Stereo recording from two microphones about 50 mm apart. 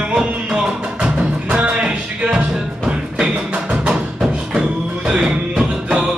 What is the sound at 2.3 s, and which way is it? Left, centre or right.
Music, centre.